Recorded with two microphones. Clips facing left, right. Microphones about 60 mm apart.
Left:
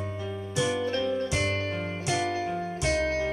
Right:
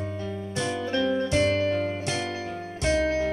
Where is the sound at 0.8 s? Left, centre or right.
Right.